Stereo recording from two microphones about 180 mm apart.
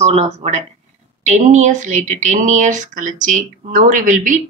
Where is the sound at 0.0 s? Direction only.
35° right (ahead or behind).